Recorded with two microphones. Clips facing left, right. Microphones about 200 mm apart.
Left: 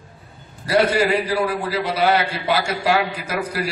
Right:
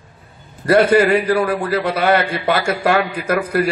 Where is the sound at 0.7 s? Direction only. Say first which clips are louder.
Right 5 dB; 55° right (ahead or behind).